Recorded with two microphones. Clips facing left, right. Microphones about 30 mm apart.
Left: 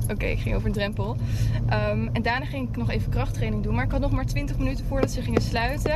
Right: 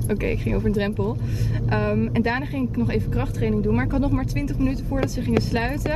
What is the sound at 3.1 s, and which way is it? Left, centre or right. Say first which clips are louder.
Speech: right 4 dB; left.